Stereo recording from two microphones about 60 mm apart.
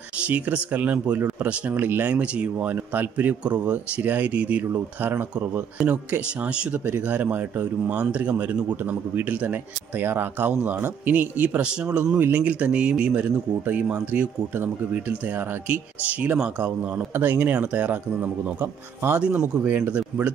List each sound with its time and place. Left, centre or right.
0.2 s speech: right
9.1 s speech: right
11.6 s speech: centre
12.2 s speech: right
17.1 s speech: right